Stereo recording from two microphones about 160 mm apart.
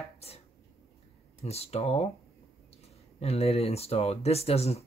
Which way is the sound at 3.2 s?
40° left (ahead or behind).